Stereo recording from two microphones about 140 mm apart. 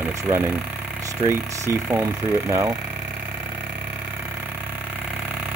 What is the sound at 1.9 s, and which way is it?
Speech, 15° right (ahead or behind).